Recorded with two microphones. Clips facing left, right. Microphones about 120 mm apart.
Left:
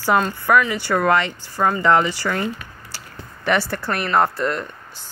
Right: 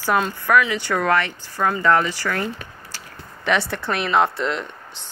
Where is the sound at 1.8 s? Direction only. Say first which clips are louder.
Left 1 dB; 15° left (ahead or behind).